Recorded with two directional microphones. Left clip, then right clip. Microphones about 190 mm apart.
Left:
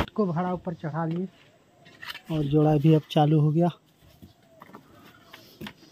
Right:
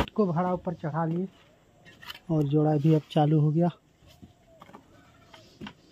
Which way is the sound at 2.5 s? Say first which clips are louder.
Left 4 dB; 10° left (ahead or behind).